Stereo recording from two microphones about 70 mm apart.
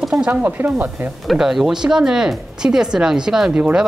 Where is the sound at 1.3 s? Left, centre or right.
Centre.